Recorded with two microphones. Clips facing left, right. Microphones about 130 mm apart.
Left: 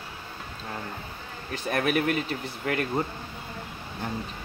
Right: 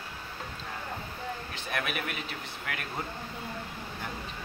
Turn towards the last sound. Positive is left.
turn(degrees=40)  # may be behind; listen again after turning